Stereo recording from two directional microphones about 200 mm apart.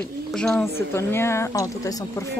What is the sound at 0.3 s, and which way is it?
Speech, 5° left (ahead or behind).